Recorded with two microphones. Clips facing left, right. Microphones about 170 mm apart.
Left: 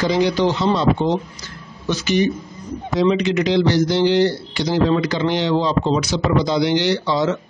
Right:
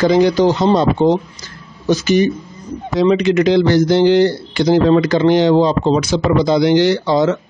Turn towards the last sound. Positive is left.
turn(degrees=-50)  # may be behind; listen again after turning